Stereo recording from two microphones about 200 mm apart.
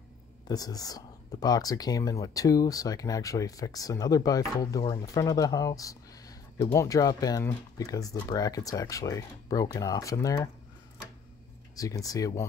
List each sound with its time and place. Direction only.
0.5 s speech: 20° left (ahead or behind)
11.7 s speech: 15° left (ahead or behind)